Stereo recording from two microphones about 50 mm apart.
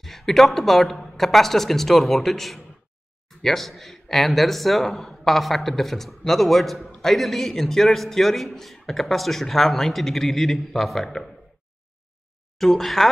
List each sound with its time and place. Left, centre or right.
0.0 s a man's voice: centre
12.5 s a man's voice: centre